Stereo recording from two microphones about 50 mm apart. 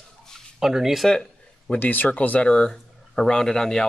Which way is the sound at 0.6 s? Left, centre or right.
Centre.